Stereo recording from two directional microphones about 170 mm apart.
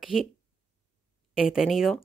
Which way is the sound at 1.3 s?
Centre (ahead or behind).